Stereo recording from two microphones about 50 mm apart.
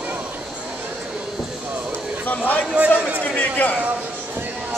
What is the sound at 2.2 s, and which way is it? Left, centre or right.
Speech, left.